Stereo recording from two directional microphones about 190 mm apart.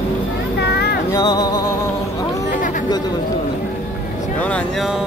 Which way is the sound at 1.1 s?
20° left (ahead or behind).